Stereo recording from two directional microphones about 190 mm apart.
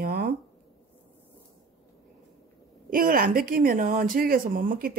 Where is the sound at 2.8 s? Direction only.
45° right (ahead or behind).